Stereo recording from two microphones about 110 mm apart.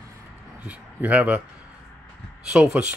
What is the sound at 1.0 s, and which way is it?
Speech, 10° right (ahead or behind).